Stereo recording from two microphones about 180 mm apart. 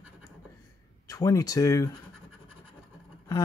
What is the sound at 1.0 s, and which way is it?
Speech, 20° left (ahead or behind).